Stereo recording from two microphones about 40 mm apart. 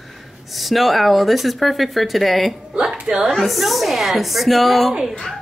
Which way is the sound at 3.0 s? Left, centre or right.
Centre.